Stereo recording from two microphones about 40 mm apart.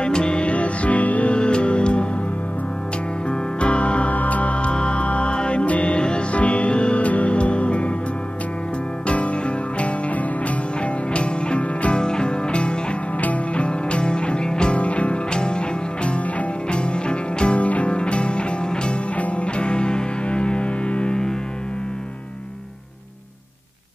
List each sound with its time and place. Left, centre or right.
0.0 s music: left
3.3 s music: left
9.0 s music: left
14.8 s music: left